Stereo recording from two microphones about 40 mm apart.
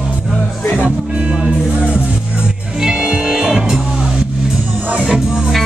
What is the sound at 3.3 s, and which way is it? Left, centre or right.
Music, centre.